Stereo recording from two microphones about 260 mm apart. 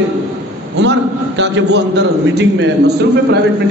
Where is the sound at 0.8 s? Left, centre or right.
Right.